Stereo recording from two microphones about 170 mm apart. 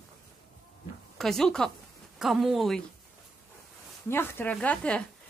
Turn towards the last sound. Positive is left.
turn(degrees=10)  # may be behind; listen again after turning